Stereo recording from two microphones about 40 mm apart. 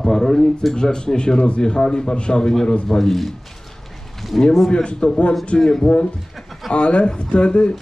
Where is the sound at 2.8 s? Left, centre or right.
Centre.